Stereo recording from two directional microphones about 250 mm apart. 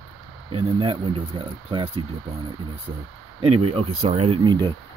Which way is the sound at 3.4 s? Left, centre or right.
Right.